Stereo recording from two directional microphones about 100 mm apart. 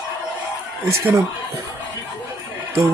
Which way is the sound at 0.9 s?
30° right (ahead or behind).